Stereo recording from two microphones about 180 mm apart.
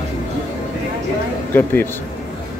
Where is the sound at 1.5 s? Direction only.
10° left (ahead or behind).